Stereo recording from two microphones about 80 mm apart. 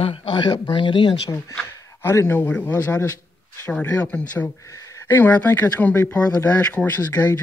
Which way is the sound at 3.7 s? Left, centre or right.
Centre.